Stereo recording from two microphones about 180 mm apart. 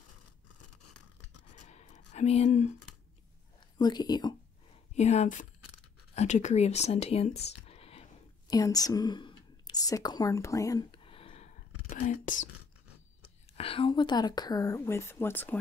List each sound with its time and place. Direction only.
1.5 s writing: 40° left (ahead or behind)
3.7 s speech: 25° left (ahead or behind)
4.9 s a woman's voice: 40° left (ahead or behind)
8.5 s speech: 20° left (ahead or behind); by 12.4 s 40° left (ahead or behind)
13.6 s speech: 30° left (ahead or behind); by 15.6 s 10° left (ahead or behind)